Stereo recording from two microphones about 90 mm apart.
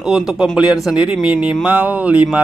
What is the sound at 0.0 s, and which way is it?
Speech, 5° right (ahead or behind).